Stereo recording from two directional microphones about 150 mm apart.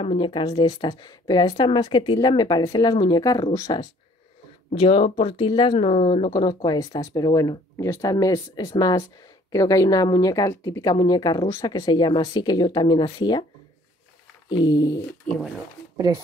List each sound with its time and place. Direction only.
0.0 s speech: 35° left (ahead or behind)
4.7 s speech: 35° left (ahead or behind)
6.2 s speech: 25° left (ahead or behind)
14.5 s speech: 30° left (ahead or behind)